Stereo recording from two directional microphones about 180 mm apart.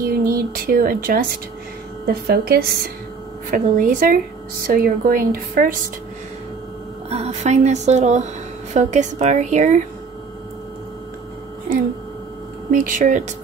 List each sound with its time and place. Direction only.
0.0 s speech: 55° right (ahead or behind)
2.2 s a woman's voice: 60° right (ahead or behind)
3.4 s a woman's voice: 50° right (ahead or behind)
7.1 s speech: 40° right (ahead or behind)
12.7 s a woman's voice: 45° right (ahead or behind)